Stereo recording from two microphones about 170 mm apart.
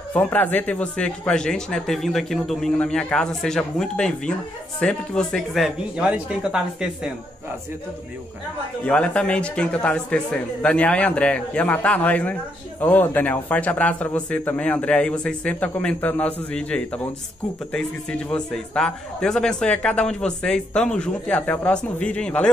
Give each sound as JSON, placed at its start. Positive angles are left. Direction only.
{"t": 0.1, "sound": "a man's voice", "side_deg": 10}
{"t": 8.8, "sound": "a man's voice", "side_deg": 5}
{"t": 18.3, "sound": "a man's voice", "side_deg": 5}